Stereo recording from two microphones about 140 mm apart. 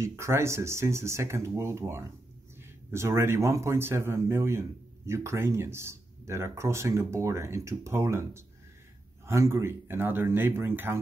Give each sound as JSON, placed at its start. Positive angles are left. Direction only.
{"t": 0.0, "sound": "a man's voice", "side_deg": -20}